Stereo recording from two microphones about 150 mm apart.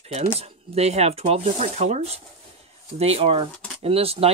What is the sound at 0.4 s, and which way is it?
Speech, 45° right (ahead or behind).